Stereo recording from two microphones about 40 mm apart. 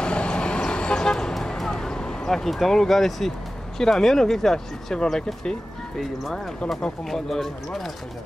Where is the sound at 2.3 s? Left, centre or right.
Centre.